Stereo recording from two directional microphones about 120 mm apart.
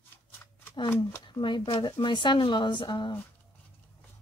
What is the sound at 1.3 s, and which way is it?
Speech, 40° left (ahead or behind).